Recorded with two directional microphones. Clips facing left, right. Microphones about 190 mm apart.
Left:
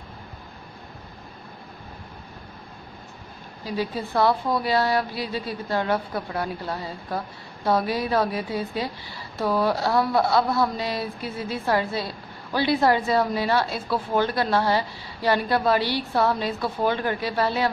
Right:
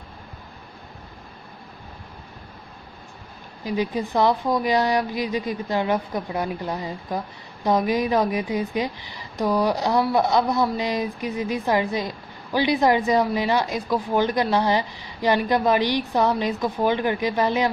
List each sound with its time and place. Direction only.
3.6 s a woman's voice: 15° right (ahead or behind)